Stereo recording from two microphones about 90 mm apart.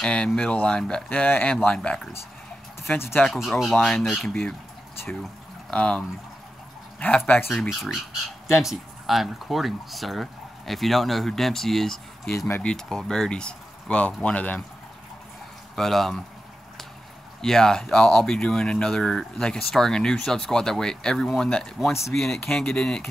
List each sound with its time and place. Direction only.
0.0 s speech: 10° left (ahead or behind)
2.8 s speech: 25° left (ahead or behind)
3.3 s speech: 5° right (ahead or behind)
4.3 s speech: 15° left (ahead or behind)
5.7 s speech: 10° left (ahead or behind)
7.8 s speech: centre (ahead or behind); by 14.6 s 15° left (ahead or behind)
15.7 s speech: 5° left (ahead or behind)
17.4 s speech: 5° left (ahead or behind)